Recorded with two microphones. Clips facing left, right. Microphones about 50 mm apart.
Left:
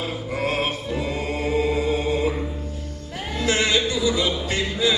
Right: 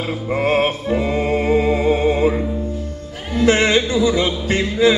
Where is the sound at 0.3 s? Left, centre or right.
Right.